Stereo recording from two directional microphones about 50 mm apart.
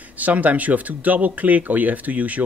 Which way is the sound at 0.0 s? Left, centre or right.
Right.